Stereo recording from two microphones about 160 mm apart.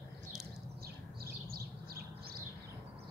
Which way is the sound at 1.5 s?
70° right (ahead or behind).